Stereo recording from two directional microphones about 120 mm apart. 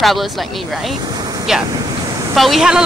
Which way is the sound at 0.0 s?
Centre (ahead or behind).